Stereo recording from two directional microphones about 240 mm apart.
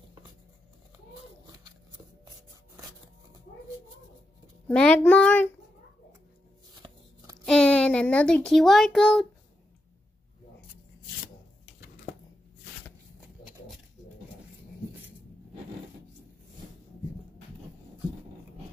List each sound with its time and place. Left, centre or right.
4.6 s a child's voice: centre
6.8 s a sound: right
7.4 s a child's voice: centre